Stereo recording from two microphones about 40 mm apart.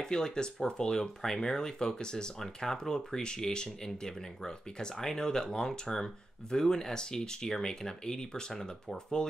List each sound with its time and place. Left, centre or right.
0.0 s speech: centre